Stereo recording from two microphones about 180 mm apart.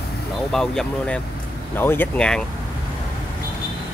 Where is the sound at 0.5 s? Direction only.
5° left (ahead or behind).